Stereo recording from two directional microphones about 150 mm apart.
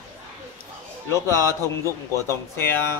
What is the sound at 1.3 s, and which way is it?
Speech, 20° right (ahead or behind).